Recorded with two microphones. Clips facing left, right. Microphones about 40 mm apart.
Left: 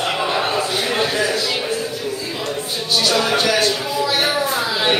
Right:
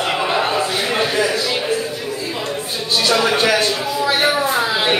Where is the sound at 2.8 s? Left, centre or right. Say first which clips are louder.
Right 2 dB; right.